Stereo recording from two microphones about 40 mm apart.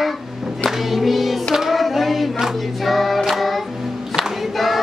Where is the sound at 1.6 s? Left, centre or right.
Centre.